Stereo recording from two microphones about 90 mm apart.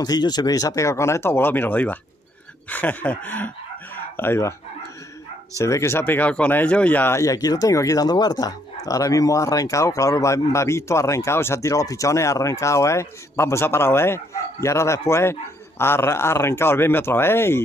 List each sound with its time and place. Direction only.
0.0 s speech: 50° left (ahead or behind); by 3.5 s 15° left (ahead or behind)
4.2 s speech: 30° left (ahead or behind)
5.6 s speech: 30° left (ahead or behind)
7.2 s speech: 40° left (ahead or behind); by 17.6 s 25° left (ahead or behind)